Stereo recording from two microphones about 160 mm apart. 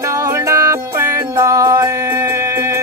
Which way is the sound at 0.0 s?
20° right (ahead or behind).